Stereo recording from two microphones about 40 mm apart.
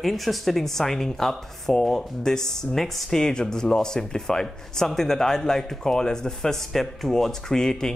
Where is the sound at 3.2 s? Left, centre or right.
Centre.